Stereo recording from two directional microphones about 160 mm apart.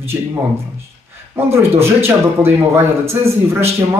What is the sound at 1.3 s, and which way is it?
Speech, 15° right (ahead or behind).